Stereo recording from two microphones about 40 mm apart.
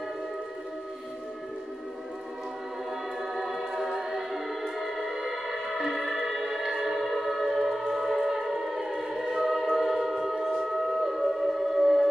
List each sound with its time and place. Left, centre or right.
3.2 s music: centre